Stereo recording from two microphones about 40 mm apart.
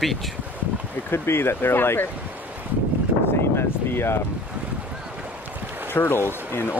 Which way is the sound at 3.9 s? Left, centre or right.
Left.